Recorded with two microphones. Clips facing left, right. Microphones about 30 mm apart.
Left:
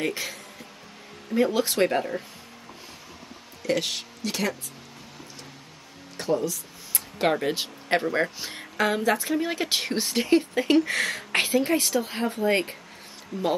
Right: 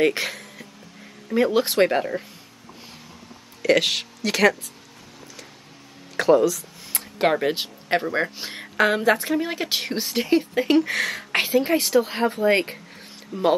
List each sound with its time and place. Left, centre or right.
0.1 s music: right
1.3 s speech: right
1.9 s speech: centre
3.6 s speech: right
6.1 s speech: right
7.2 s speech: centre
8.4 s speech: right
9.3 s speech: centre
11.7 s speech: right